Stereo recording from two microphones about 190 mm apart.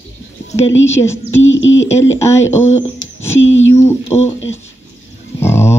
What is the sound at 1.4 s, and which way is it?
Music, 90° left.